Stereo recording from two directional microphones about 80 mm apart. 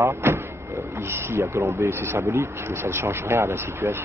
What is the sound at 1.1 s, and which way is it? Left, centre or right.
Speech, right.